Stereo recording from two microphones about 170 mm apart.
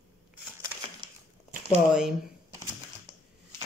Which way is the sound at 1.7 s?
5° right (ahead or behind).